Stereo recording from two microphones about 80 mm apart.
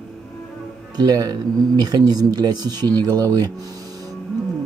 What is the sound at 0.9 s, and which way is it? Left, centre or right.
Speech, right.